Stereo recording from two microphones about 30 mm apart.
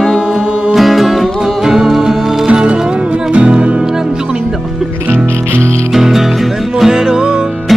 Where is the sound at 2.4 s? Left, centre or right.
Right.